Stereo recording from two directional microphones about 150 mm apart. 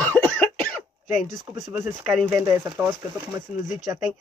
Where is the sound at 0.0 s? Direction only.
10° left (ahead or behind).